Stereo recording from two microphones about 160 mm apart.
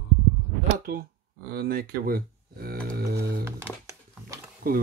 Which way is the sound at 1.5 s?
70° right (ahead or behind).